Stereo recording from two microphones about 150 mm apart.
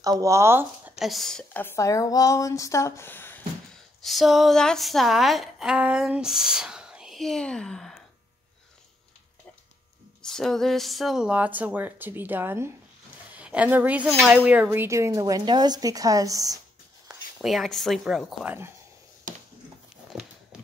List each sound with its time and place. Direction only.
0.0 s speech: 20° right (ahead or behind)
0.9 s speech: centre (ahead or behind)
1.6 s speech: 15° left (ahead or behind)
4.0 s a woman's voice: centre (ahead or behind)
10.2 s a woman's voice: 5° left (ahead or behind); by 16.5 s 25° right (ahead or behind)
17.1 s speech: 5° right (ahead or behind)